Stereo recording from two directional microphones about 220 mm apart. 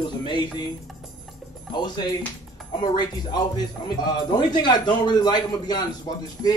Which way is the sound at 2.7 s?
20° left (ahead or behind).